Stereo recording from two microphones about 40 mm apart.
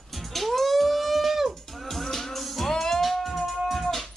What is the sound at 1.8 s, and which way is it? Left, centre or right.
Music, centre.